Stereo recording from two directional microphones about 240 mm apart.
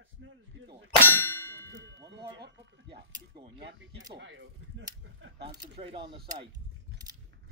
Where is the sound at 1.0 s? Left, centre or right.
Centre.